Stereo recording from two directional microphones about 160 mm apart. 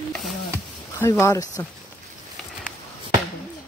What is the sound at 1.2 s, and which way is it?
Speech, 20° left (ahead or behind).